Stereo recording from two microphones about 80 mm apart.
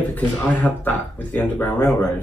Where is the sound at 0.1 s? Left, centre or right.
Left.